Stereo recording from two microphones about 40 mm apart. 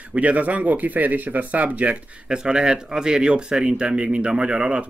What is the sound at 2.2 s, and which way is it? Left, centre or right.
Speech, centre.